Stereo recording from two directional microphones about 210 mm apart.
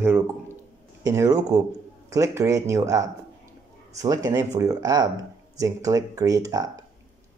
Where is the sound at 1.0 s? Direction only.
15° right (ahead or behind).